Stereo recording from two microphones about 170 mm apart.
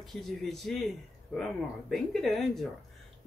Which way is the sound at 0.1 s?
Centre (ahead or behind).